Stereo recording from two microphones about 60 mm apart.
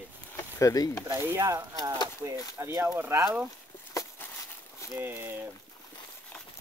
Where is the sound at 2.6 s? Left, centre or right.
Right.